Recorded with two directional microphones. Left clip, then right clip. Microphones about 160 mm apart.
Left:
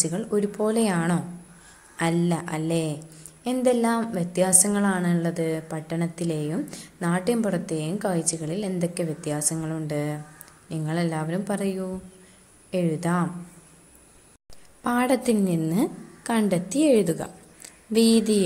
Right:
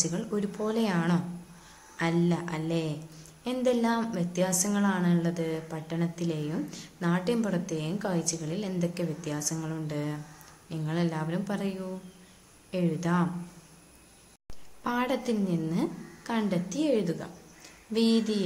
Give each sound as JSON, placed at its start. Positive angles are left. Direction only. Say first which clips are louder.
{"t": 0.0, "sound": "a woman's voice", "louder": "left 6 dB", "side_deg": 25}
{"t": 14.8, "sound": "a woman's voice", "louder": "left 6 dB", "side_deg": 30}